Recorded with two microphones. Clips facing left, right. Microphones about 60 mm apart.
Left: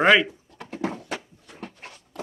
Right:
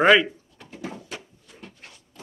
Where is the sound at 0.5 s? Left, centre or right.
Left.